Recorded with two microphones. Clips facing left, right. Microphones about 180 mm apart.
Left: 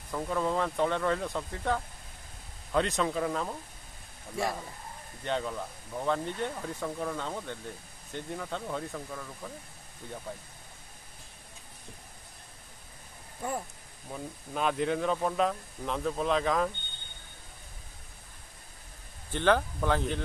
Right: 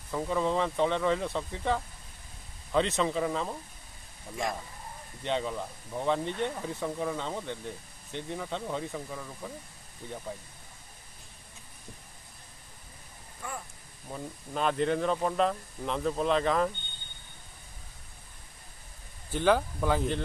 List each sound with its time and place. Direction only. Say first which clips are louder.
0.1 s speech: right 1 dB; centre (ahead or behind)
5.2 s speech: right 1 dB; centre (ahead or behind)
14.1 s speech: right 1 dB; 5° left (ahead or behind)
19.3 s speech: right 1 dB; 5° right (ahead or behind)